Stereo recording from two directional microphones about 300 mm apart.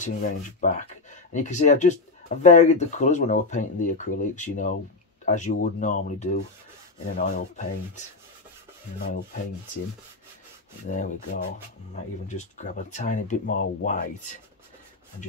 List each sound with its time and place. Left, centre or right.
0.0 s speech: left
10.9 s speech: left